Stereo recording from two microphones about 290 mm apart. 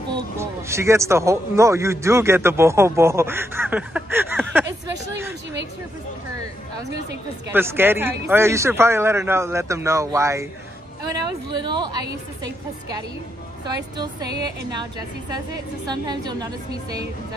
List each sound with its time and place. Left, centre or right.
0.1 s a man's voice: centre
7.5 s a man's voice: centre
11.4 s a man's voice: centre
15.0 s a man's voice: centre